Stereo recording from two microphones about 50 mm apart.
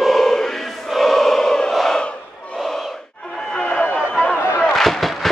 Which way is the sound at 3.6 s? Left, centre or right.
Left.